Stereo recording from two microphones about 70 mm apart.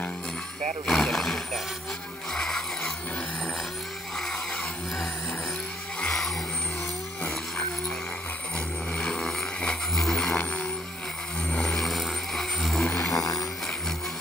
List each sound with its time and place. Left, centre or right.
0.8 s speech: centre
2.3 s music: centre
5.9 s vehicle: centre
8.5 s vehicle: centre
9.9 s a sound: centre
11.7 s vehicle: centre
13.1 s a sound: left